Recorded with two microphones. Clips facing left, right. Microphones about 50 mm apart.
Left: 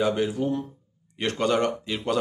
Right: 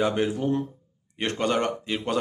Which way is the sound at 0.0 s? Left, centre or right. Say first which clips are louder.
Even; right.